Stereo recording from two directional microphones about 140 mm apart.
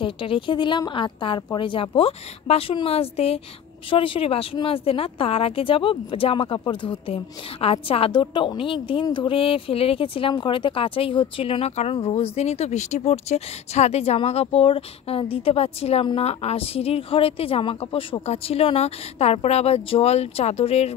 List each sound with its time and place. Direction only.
0.0 s a woman's voice: 40° left (ahead or behind)